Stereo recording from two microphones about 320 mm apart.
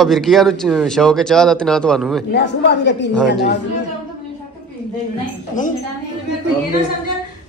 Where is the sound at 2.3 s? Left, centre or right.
Left.